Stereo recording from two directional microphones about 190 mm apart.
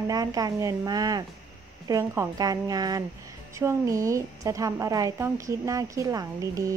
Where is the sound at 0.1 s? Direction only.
20° right (ahead or behind).